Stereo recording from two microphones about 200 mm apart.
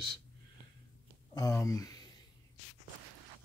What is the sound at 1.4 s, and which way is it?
Speech, 15° left (ahead or behind).